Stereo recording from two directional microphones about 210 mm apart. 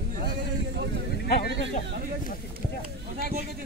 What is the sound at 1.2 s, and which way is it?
Speech, 50° left (ahead or behind).